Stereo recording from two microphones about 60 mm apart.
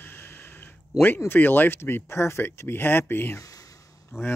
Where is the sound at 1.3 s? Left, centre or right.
Left.